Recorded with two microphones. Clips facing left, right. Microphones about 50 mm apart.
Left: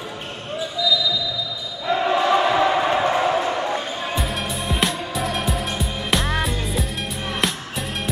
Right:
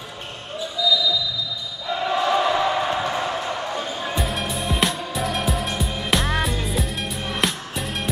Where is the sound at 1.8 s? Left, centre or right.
Left.